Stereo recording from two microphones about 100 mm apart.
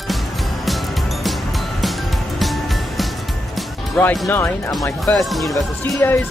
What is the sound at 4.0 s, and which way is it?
Speech, 15° left (ahead or behind).